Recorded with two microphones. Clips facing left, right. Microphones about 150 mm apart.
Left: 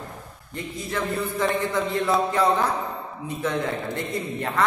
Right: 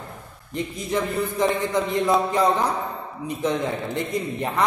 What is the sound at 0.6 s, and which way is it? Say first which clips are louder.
A man's voice: right 4 dB; 20° right (ahead or behind).